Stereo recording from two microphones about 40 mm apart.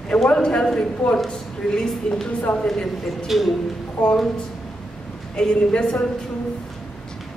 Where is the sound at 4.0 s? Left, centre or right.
Left.